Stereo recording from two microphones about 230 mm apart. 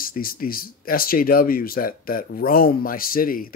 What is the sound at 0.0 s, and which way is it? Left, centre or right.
Speech, left.